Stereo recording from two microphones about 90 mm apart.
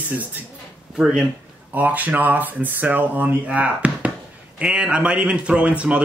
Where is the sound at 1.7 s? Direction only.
20° right (ahead or behind).